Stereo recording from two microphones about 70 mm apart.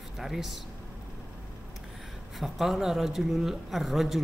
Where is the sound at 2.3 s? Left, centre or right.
Centre.